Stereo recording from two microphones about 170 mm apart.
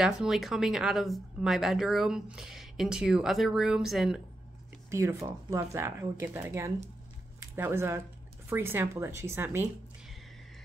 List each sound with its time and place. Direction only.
0.0 s speech: centre (ahead or behind)
4.9 s speech: 15° right (ahead or behind)